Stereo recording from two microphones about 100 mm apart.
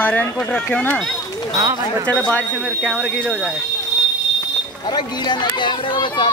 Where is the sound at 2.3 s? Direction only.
10° left (ahead or behind).